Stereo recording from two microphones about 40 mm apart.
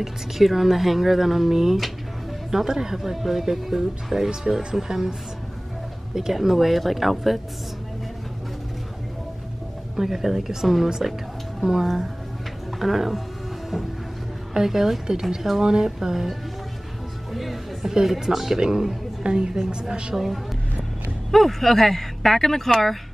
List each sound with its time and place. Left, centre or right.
0.0 s speech: centre
6.1 s speech: centre
9.9 s speech: centre
14.5 s speech: centre
17.3 s music: centre
18.0 s a woman's voice: centre
21.3 s speech: centre